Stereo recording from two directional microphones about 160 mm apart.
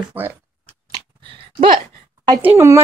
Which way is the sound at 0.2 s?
10° right (ahead or behind).